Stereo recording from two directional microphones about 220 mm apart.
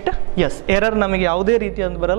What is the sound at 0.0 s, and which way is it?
Speech, 10° right (ahead or behind).